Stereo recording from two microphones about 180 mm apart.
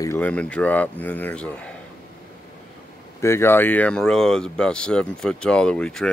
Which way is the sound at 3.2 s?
15° left (ahead or behind).